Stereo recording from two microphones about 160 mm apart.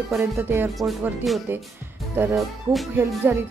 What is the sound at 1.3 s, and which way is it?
Speech, centre (ahead or behind).